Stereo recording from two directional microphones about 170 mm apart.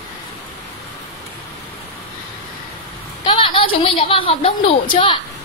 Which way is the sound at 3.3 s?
30° left (ahead or behind).